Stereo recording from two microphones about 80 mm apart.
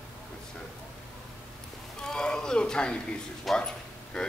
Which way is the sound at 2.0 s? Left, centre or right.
Centre.